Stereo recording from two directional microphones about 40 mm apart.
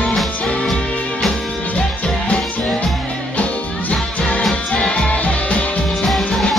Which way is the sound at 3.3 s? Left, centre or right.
Left.